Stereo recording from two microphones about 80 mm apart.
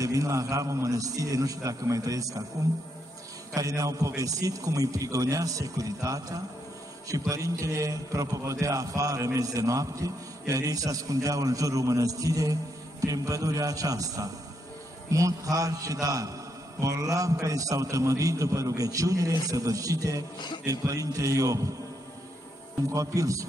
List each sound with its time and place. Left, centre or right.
0.0 s a man's voice: right
3.5 s a man's voice: right
20.3 s speech: left
20.6 s a man's voice: right
22.9 s a man's voice: right